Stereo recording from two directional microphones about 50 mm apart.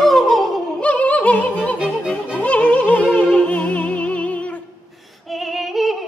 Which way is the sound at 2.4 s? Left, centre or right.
Left.